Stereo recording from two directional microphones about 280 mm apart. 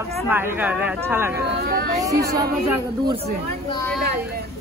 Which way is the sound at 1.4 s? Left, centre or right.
Right.